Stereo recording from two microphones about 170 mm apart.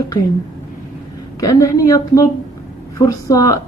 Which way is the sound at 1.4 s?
20° left (ahead or behind).